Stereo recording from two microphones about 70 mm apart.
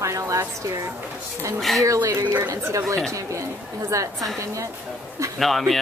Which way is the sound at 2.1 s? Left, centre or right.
Right.